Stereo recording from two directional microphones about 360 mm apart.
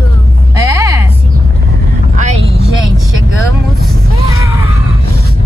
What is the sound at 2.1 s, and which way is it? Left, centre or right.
Vehicle, centre.